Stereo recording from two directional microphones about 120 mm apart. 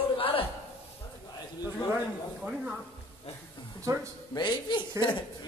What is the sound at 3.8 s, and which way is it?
Speech, 25° right (ahead or behind).